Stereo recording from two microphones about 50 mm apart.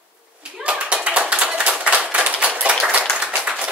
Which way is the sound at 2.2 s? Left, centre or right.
Right.